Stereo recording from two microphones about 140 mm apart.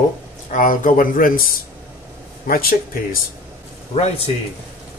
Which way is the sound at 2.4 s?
90° left.